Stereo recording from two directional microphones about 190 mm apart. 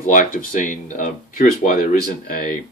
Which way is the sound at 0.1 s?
45° left (ahead or behind).